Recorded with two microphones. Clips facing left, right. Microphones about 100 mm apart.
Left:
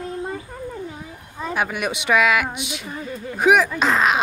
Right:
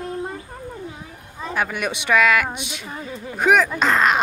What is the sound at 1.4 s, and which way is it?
Speech, 10° left (ahead or behind).